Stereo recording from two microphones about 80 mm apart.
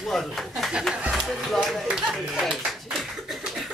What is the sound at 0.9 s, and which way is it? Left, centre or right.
Speech, centre.